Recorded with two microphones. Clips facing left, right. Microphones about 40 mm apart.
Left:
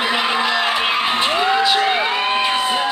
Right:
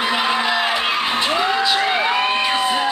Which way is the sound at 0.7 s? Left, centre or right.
Centre.